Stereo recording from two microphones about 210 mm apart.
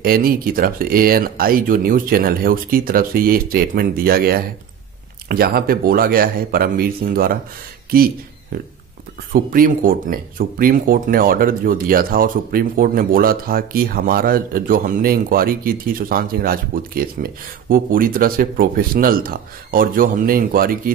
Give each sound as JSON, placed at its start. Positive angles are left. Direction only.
{"t": 0.0, "sound": "speech", "side_deg": -45}
{"t": 9.3, "sound": "speech", "side_deg": -40}